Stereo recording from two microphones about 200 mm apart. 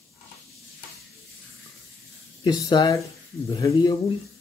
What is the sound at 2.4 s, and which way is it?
Speech, 20° left (ahead or behind).